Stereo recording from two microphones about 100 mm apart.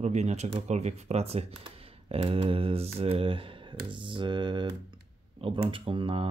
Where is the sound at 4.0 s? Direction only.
55° right (ahead or behind).